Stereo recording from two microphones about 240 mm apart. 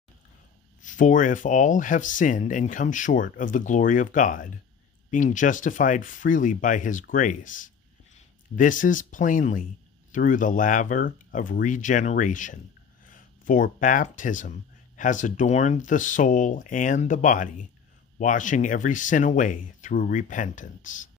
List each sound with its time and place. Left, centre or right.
0.8 s speech: left